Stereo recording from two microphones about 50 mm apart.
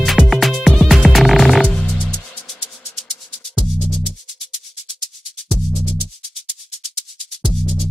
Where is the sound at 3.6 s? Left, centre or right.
Centre.